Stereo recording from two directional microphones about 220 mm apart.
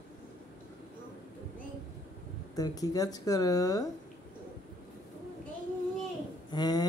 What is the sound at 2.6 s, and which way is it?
Speech, 15° left (ahead or behind).